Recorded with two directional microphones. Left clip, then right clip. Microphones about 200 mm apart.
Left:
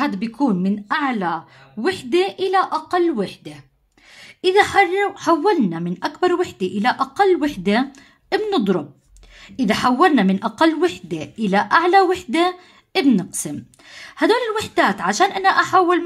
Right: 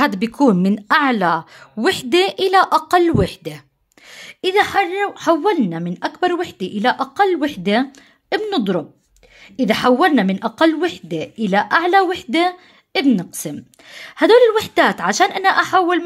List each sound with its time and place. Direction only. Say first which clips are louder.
0.0 s a woman's voice: right 6 dB; 45° right (ahead or behind); by 16.0 s 30° right (ahead or behind)